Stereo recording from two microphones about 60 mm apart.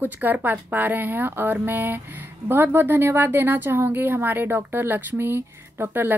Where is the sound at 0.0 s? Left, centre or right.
Right.